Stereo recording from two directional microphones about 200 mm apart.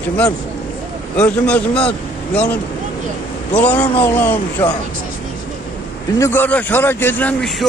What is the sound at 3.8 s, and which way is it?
Speech, 25° left (ahead or behind).